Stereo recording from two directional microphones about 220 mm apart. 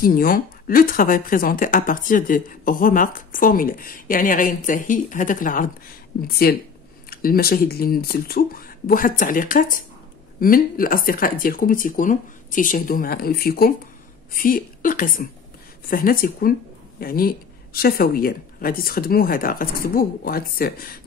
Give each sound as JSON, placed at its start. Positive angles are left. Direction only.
{"t": 0.0, "sound": "a woman's voice", "side_deg": 40}